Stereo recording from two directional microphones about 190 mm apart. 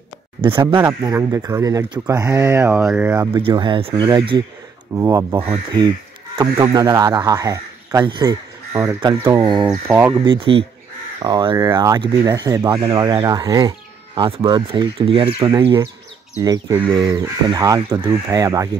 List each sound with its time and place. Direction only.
0.8 s speech: 20° right (ahead or behind)
10.2 s speech: 25° right (ahead or behind)